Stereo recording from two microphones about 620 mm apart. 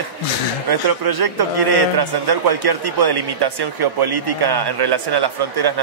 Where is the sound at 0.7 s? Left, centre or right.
Right.